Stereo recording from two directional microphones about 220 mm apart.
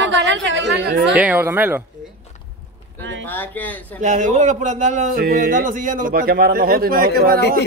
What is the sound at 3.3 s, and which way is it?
Speech, 10° left (ahead or behind).